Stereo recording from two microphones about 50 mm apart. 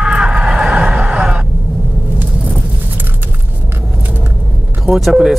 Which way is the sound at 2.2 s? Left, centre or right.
Right.